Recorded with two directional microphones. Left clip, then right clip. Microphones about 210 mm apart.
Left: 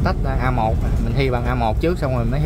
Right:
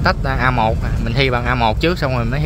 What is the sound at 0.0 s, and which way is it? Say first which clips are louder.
Speech: right 6 dB; centre (ahead or behind).